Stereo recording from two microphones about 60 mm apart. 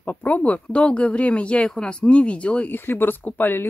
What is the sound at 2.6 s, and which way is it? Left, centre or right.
Speech, left.